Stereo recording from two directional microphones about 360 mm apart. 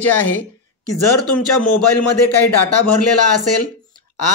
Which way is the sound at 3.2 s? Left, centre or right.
Left.